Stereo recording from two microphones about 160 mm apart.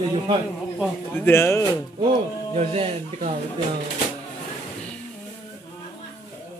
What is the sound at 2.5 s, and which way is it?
Speech, 40° right (ahead or behind).